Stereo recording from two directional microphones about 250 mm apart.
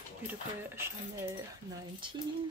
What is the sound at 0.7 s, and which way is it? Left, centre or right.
Speech, centre.